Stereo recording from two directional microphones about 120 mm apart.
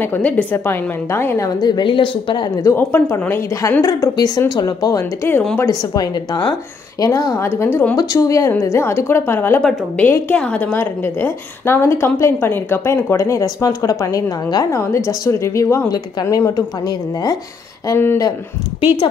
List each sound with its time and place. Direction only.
0.0 s a woman's voice: 15° left (ahead or behind)
1.6 s speech: 40° left (ahead or behind)
2.6 s a woman's voice: 20° left (ahead or behind)
5.7 s a woman's voice: 35° left (ahead or behind); by 8.0 s 20° left (ahead or behind)
8.0 s a woman's voice: 30° left (ahead or behind)
9.6 s a woman's voice: 5° left (ahead or behind)
10.0 s a woman's voice: 15° left (ahead or behind); by 17.4 s 35° left (ahead or behind)
17.9 s a woman's voice: 20° left (ahead or behind)